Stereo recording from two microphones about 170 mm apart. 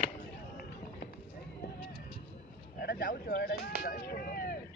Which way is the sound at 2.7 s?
60° left (ahead or behind).